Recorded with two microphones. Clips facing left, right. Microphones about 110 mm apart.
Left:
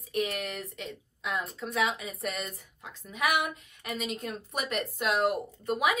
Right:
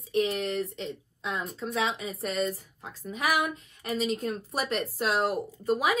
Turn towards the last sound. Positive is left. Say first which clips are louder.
# right 2 dB
turn(degrees=-30)  # may be behind; listen again after turning